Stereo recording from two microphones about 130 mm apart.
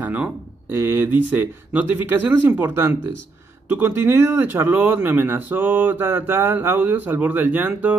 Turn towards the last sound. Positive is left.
turn(degrees=-15)  # may be behind; listen again after turning